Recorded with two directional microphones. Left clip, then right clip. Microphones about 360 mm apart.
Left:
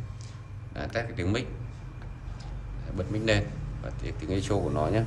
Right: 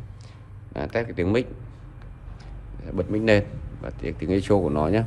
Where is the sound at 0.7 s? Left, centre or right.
Centre.